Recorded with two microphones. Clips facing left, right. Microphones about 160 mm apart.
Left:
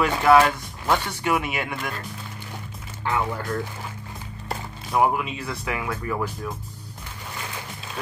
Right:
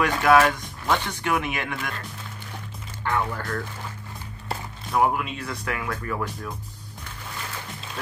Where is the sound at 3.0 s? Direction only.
5° left (ahead or behind).